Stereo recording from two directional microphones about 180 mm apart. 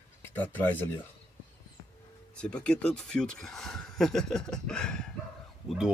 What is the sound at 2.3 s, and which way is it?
Speech, 5° left (ahead or behind).